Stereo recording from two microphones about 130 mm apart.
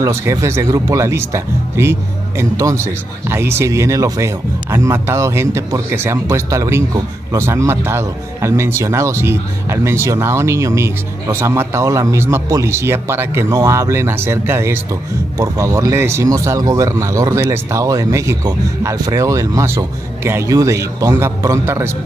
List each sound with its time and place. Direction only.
0.0 s speech: 20° right (ahead or behind)